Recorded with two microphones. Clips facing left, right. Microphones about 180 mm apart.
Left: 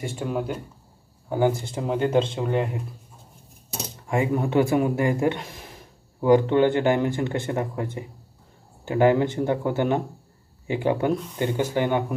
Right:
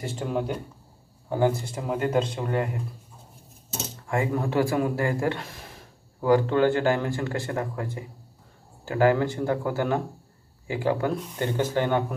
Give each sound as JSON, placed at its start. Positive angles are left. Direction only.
{"t": 0.0, "sound": "speech", "side_deg": 10}
{"t": 1.9, "sound": "speech", "side_deg": 25}
{"t": 4.1, "sound": "speech", "side_deg": 15}